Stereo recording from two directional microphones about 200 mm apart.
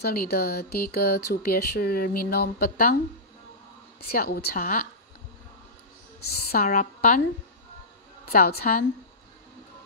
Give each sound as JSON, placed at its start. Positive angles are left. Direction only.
{"t": 0.0, "sound": "speech", "side_deg": 50}
{"t": 4.1, "sound": "speech", "side_deg": 50}
{"t": 6.5, "sound": "speech", "side_deg": 45}
{"t": 8.3, "sound": "speech", "side_deg": 50}